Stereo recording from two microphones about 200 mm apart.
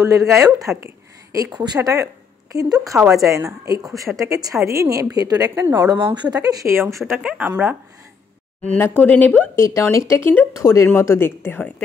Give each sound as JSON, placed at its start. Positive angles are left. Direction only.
{"t": 0.0, "sound": "a woman's voice", "side_deg": -15}
{"t": 3.0, "sound": "a woman's voice", "side_deg": 0}
{"t": 3.3, "sound": "a woman's voice", "side_deg": -15}
{"t": 8.6, "sound": "speech", "side_deg": 10}